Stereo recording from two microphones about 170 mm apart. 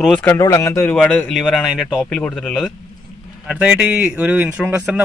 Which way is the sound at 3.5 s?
10° right (ahead or behind).